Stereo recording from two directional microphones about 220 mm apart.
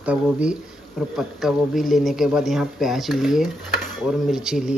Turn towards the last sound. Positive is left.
turn(degrees=-5)  # may be behind; listen again after turning